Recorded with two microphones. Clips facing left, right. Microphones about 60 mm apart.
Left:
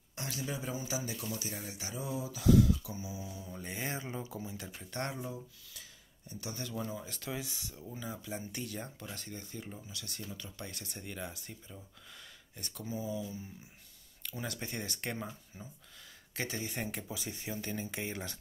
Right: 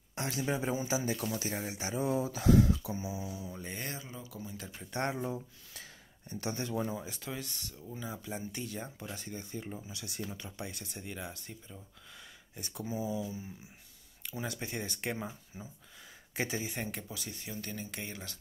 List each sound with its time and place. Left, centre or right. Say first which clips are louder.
0.1 s speech: right 5 dB; right
1.4 s speech: right 6 dB; right
3.4 s speech: left 1 dB; centre
4.1 s speech: left 3 dB; left
4.9 s speech: right 4 dB; centre
5.2 s a sound: right 5 dB; right
6.5 s speech: right 4 dB; right
7.0 s speech: right 2 dB; centre
7.2 s speech: left 1 dB; centre
8.0 s speech: right 1 dB; centre
10.6 s speech: right 2 dB; centre
12.5 s speech: right 3 dB; centre
17.1 s speech: left 2 dB; centre